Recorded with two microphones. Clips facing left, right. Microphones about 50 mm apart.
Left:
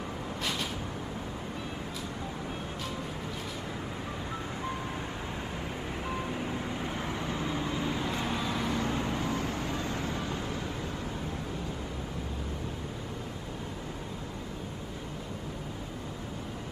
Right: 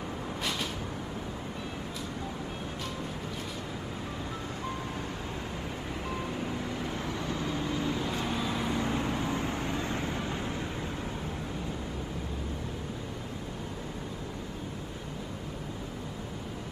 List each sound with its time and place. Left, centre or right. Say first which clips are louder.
6.0 s vehicle: even; centre
9.3 s vehicle: right 1 dB; right